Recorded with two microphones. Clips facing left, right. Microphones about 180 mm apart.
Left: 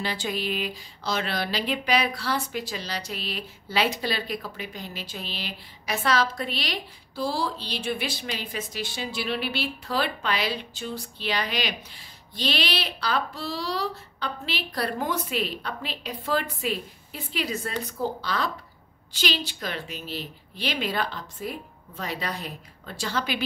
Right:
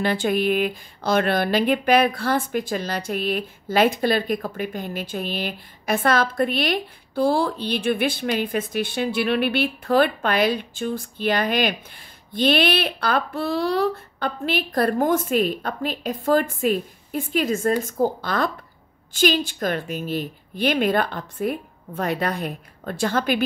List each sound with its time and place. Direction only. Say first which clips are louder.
0.0 s speech: right 9 dB; 55° right (ahead or behind)